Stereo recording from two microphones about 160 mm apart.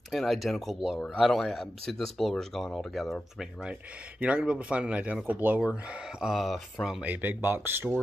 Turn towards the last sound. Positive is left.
turn(degrees=-10)  # may be behind; listen again after turning